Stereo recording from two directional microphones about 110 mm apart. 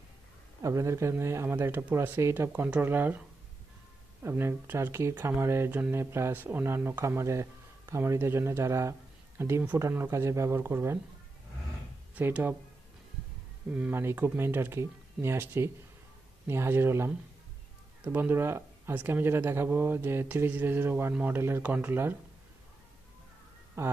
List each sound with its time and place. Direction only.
0.6 s speech: 25° right (ahead or behind)
12.2 s speech: 15° right (ahead or behind)
13.7 s speech: 15° right (ahead or behind)
23.8 s speech: 20° right (ahead or behind)